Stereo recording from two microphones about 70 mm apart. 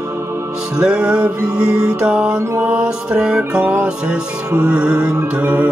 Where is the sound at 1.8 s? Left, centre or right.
Centre.